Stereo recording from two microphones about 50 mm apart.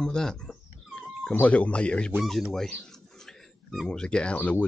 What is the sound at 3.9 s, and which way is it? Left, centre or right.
Speech, centre.